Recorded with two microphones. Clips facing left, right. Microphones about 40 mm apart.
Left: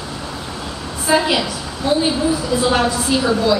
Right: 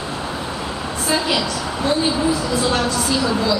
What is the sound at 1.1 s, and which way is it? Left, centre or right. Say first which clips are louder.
Speech: left 6 dB; centre.